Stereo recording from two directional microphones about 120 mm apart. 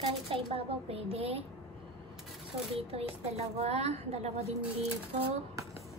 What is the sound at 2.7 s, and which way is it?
Speech, 60° right (ahead or behind).